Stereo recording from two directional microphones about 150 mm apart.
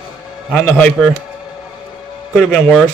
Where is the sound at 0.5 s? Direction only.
10° left (ahead or behind).